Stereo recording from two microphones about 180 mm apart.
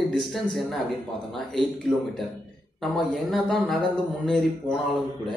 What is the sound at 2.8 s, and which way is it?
Speech, centre (ahead or behind).